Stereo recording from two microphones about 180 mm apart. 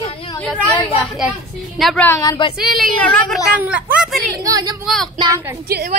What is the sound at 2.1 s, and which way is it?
Speech, 20° left (ahead or behind).